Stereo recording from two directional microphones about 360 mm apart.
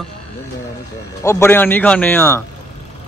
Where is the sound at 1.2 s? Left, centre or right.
Centre.